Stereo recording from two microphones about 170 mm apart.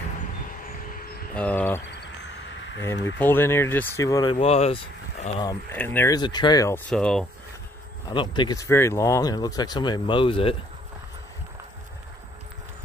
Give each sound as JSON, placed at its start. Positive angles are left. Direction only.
{"t": 1.3, "sound": "speech", "side_deg": 10}
{"t": 2.8, "sound": "speech", "side_deg": 15}
{"t": 5.7, "sound": "speech", "side_deg": 10}
{"t": 6.9, "sound": "speech", "side_deg": 5}
{"t": 8.1, "sound": "speech", "side_deg": 30}